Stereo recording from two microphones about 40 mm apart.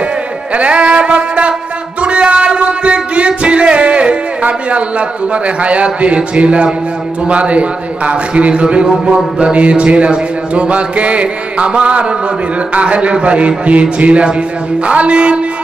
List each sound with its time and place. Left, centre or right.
0.5 s music: right
7.2 s a man's voice: right